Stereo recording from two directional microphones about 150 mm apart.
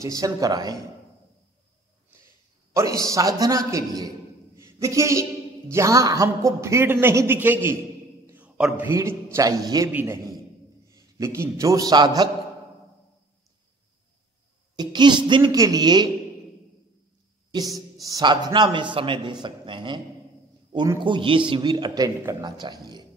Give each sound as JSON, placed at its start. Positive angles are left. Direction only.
{"t": 0.0, "sound": "a man's voice", "side_deg": -25}
{"t": 2.7, "sound": "a man's voice", "side_deg": -20}
{"t": 14.8, "sound": "a man's voice", "side_deg": -30}
{"t": 17.5, "sound": "a woman's voice", "side_deg": -25}
{"t": 20.7, "sound": "a man's voice", "side_deg": -20}
{"t": 21.0, "sound": "a man's voice", "side_deg": -35}